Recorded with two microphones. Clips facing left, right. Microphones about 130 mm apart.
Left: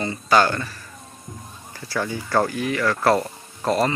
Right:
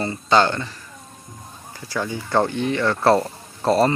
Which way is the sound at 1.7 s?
15° right (ahead or behind).